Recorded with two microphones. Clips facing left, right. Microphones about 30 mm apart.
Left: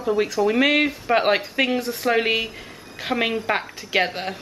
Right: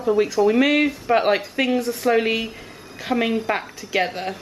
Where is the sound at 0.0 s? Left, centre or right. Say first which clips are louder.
Right 3 dB; centre.